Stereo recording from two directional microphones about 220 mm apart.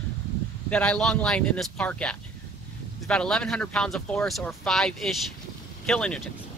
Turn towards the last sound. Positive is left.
turn(degrees=5)  # may be behind; listen again after turning